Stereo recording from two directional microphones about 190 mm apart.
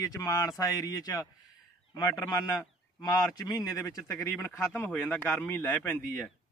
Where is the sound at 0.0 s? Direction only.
15° left (ahead or behind).